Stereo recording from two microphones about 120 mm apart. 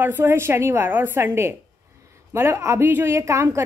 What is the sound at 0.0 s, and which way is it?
A woman's voice, 15° right (ahead or behind).